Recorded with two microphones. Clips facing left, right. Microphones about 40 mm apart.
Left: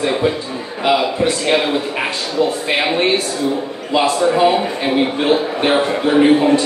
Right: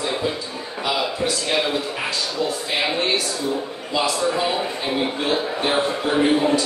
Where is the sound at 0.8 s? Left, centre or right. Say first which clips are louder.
Left 8 dB; left.